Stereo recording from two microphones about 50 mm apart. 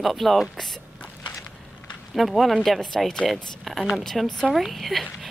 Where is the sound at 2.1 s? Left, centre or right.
Centre.